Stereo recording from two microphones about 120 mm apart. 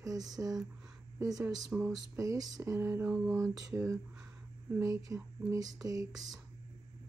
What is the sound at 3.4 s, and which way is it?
Speech, 25° right (ahead or behind).